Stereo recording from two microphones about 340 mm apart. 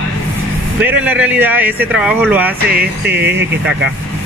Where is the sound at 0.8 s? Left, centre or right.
Centre.